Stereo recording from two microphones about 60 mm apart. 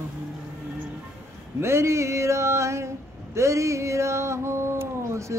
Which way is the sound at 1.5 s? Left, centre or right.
Right.